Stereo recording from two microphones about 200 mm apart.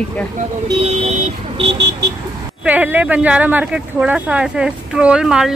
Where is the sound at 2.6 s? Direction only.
10° right (ahead or behind).